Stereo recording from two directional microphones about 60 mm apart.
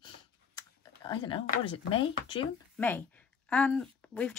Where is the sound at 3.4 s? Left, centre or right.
Centre.